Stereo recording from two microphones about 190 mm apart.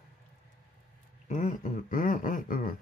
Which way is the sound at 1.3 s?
40° left (ahead or behind).